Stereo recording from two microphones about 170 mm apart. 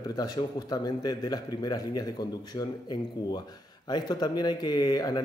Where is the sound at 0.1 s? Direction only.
25° left (ahead or behind).